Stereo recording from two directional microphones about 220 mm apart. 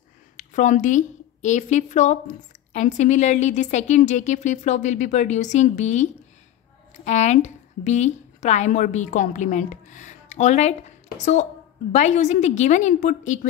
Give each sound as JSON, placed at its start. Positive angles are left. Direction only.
{"t": 0.4, "sound": "a woman's voice", "side_deg": 35}
{"t": 7.1, "sound": "a woman's voice", "side_deg": 30}